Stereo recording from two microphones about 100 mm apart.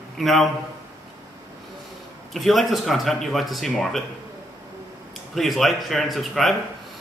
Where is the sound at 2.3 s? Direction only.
Centre (ahead or behind).